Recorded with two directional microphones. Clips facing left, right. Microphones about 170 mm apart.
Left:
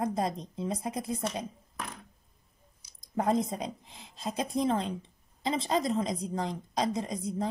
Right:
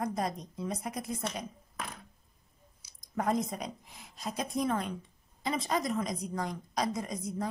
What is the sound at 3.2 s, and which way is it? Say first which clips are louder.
A woman's voice: left 3 dB; 30° left (ahead or behind).